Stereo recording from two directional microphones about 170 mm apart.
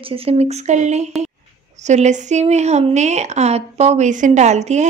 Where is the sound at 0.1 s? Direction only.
35° right (ahead or behind).